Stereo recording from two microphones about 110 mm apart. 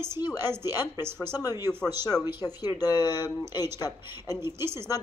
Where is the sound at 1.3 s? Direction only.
35° left (ahead or behind).